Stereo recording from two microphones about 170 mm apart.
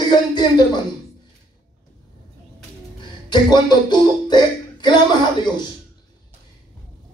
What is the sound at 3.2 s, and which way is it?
Speech, 25° left (ahead or behind).